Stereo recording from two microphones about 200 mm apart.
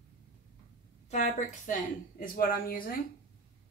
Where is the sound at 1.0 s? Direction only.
35° left (ahead or behind).